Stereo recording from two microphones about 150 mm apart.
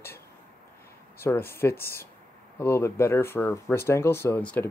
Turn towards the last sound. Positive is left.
turn(degrees=15)  # may be behind; listen again after turning